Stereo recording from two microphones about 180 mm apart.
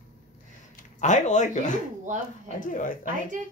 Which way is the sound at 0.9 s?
40° left (ahead or behind).